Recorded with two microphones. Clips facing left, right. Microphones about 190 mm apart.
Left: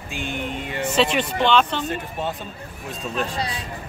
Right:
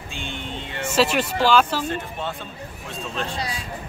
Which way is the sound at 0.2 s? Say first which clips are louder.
Left 5 dB; 10° left (ahead or behind).